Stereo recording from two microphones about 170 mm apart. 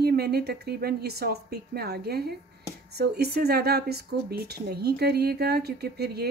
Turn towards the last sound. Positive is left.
turn(degrees=-70)  # may be behind; listen again after turning